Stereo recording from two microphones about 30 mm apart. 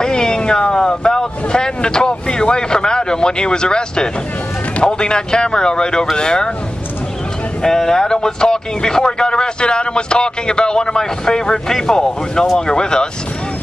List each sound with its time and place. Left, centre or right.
0.0 s cat: left
0.7 s vehicle: left
4.8 s speech: left
7.6 s speech: centre